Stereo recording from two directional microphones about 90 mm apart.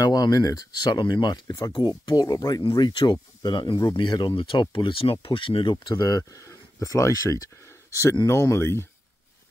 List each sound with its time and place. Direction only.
0.0 s speech: 45° left (ahead or behind)
4.0 s speech: 55° left (ahead or behind); by 8.8 s 30° left (ahead or behind)